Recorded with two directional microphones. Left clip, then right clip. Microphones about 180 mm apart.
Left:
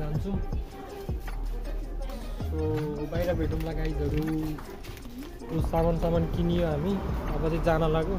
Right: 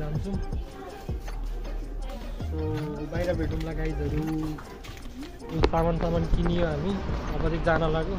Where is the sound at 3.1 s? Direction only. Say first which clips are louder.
Right 2 dB; 5° left (ahead or behind).